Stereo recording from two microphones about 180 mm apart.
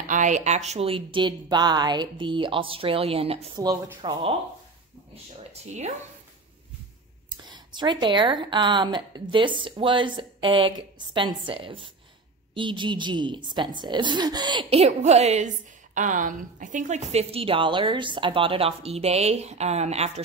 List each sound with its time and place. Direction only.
0.1 s a woman's voice: 40° right (ahead or behind)
3.6 s speech: 20° right (ahead or behind); by 5.9 s 40° right (ahead or behind)
7.2 s a woman's voice: 25° right (ahead or behind)